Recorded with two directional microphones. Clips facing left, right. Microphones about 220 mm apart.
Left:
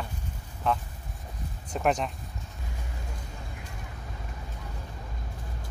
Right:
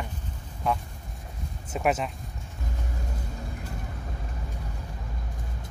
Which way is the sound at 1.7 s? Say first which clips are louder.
Right 1 dB; 5° right (ahead or behind).